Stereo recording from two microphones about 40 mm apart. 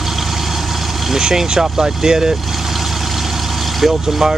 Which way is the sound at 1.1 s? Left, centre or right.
Centre.